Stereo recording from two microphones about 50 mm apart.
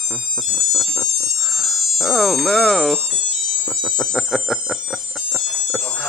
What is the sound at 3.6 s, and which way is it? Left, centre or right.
Alarm, centre.